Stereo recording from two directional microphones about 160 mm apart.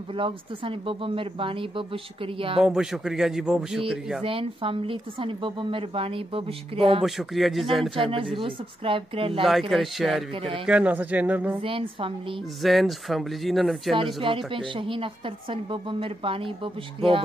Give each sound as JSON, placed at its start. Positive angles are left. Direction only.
{"t": 0.1, "sound": "speech", "side_deg": -35}
{"t": 2.6, "sound": "speech", "side_deg": -5}
{"t": 4.2, "sound": "speech", "side_deg": -35}
{"t": 7.0, "sound": "speech", "side_deg": 0}
{"t": 7.9, "sound": "speech", "side_deg": -35}
{"t": 9.5, "sound": "speech", "side_deg": 0}
{"t": 11.6, "sound": "speech", "side_deg": -35}
{"t": 12.6, "sound": "speech", "side_deg": 0}
{"t": 14.2, "sound": "speech", "side_deg": -35}